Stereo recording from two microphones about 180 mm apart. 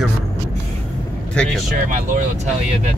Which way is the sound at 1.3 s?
5° left (ahead or behind).